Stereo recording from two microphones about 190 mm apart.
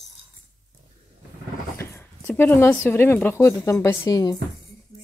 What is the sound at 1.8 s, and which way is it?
A woman's voice, 10° left (ahead or behind).